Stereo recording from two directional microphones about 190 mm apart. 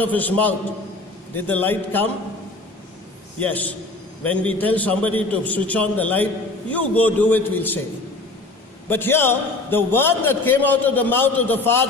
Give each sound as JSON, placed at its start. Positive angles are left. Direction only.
{"t": 0.0, "sound": "a man's voice", "side_deg": 10}
{"t": 3.3, "sound": "a man's voice", "side_deg": 10}
{"t": 8.8, "sound": "a man's voice", "side_deg": 10}